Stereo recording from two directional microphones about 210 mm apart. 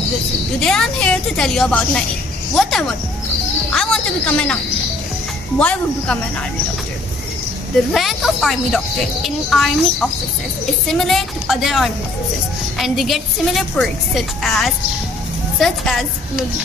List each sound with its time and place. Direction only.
0.6 s speech: 5° left (ahead or behind)
5.6 s speech: 5° left (ahead or behind)
7.9 s speech: centre (ahead or behind)